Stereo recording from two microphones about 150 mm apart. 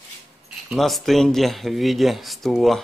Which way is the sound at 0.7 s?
Centre (ahead or behind).